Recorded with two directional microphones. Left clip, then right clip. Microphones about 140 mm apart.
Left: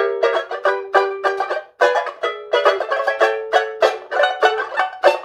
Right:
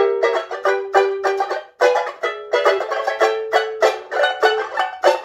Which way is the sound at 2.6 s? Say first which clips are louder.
Left 1 dB; 20° left (ahead or behind).